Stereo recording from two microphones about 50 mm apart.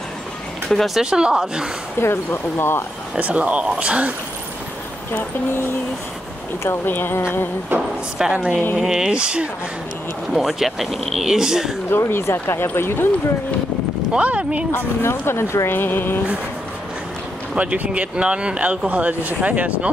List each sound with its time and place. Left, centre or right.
0.7 s speech: centre
0.9 s speech: centre
2.0 s speech: left
3.2 s speech: right
6.9 s speech: left
8.2 s speech: centre
9.1 s speech: centre
10.3 s speech: centre
11.2 s speech: centre
12.1 s speech: left
12.6 s speech: left
14.1 s speech: right
14.7 s speech: left
17.6 s speech: right